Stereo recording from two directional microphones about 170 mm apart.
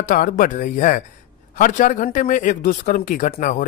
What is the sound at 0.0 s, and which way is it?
Speech, 50° left (ahead or behind).